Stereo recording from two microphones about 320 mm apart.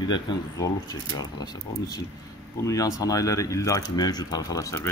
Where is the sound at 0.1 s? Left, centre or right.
Centre.